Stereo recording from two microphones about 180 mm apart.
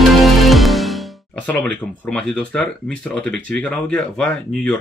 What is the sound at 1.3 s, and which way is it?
Speech, 10° left (ahead or behind).